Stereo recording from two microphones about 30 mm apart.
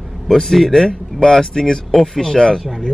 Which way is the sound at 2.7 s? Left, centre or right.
Centre.